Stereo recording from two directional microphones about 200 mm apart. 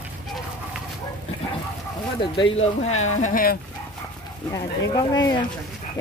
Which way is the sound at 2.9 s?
90° left.